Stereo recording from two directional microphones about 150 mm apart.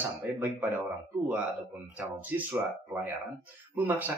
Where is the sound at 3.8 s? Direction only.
10° right (ahead or behind).